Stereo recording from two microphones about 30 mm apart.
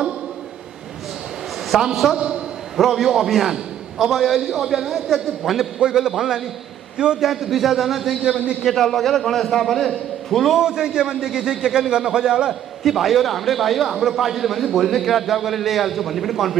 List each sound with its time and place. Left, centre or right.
1.7 s a man's voice: centre
2.1 s a man's voice: right
2.8 s a man's voice: centre
5.8 s a man's voice: right
7.2 s a man's voice: centre
8.2 s a man's voice: centre
8.7 s a man's voice: centre
10.6 s a man's voice: right
12.8 s a man's voice: centre